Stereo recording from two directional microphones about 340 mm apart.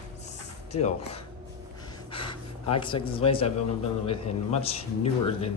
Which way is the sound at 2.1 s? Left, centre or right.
Centre.